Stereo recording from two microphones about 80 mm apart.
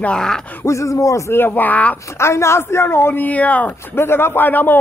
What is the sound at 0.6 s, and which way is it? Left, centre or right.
Speech, left.